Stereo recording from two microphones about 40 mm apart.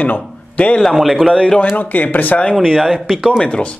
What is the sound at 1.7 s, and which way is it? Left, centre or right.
Speech, left.